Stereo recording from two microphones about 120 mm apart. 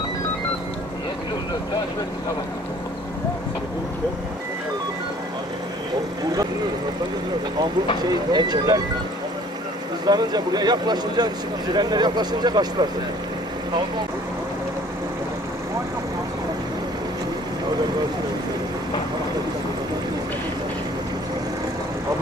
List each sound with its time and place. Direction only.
8.0 s speech: 35° right (ahead or behind)
10.0 s speech: 35° right (ahead or behind)